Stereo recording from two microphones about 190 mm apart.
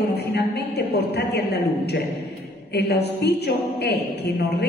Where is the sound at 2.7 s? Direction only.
60° left (ahead or behind).